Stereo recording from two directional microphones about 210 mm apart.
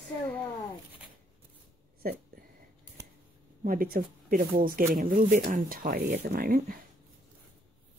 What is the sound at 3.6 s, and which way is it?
Speech, 45° right (ahead or behind).